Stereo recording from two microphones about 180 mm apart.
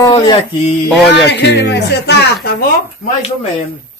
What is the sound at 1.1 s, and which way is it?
Speech, 75° left (ahead or behind).